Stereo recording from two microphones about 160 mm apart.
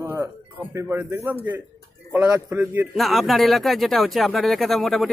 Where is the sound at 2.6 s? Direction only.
10° right (ahead or behind).